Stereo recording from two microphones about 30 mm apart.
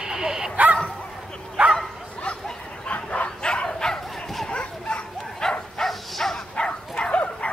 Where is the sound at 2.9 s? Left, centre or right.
Left.